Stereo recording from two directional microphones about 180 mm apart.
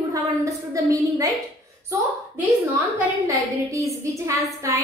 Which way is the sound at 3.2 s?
15° right (ahead or behind).